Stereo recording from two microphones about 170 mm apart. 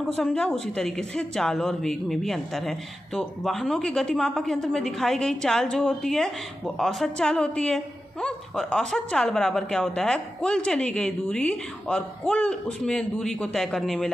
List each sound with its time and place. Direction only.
0.2 s a woman's voice: 5° left (ahead or behind)